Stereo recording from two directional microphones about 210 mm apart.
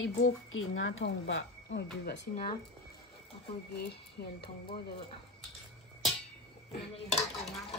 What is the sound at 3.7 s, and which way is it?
Speech, 50° left (ahead or behind).